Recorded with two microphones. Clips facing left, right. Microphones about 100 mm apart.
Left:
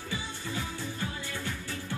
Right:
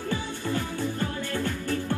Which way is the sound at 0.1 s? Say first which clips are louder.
Right 7 dB; 50° right (ahead or behind).